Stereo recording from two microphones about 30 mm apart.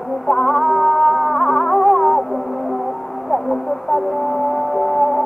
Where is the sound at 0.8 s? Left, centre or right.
Centre.